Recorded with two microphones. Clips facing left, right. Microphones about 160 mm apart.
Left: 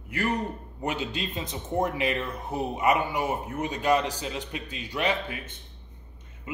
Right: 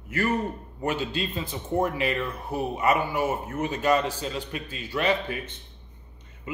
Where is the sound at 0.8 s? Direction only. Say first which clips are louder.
Right 3 dB; 15° left (ahead or behind).